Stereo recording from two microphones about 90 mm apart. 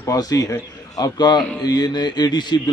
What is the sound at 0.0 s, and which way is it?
A man's voice, 40° left (ahead or behind).